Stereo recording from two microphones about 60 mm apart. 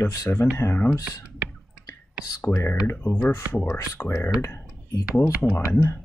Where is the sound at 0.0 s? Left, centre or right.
Left.